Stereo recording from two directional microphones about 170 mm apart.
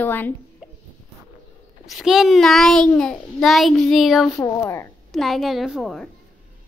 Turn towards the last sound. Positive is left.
turn(degrees=0)  # may be behind; listen again after turning